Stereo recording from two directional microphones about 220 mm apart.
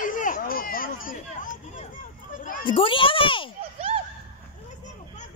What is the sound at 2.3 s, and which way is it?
Children playing, 35° left (ahead or behind).